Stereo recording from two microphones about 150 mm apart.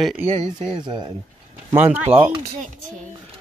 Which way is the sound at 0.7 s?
30° right (ahead or behind).